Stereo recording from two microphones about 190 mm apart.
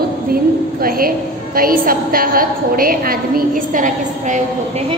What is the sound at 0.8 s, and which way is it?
A woman's voice, 50° right (ahead or behind).